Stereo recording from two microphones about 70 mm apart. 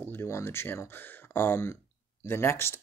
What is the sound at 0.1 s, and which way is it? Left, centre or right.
Speech, left.